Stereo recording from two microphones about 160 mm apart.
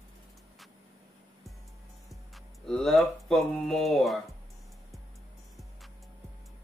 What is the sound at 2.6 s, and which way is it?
Speech, 5° left (ahead or behind).